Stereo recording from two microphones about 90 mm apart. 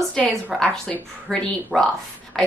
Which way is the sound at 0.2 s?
10° left (ahead or behind).